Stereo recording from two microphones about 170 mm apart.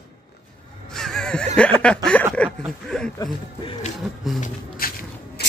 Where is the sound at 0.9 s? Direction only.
5° left (ahead or behind).